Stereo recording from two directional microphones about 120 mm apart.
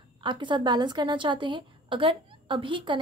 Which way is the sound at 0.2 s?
40° right (ahead or behind).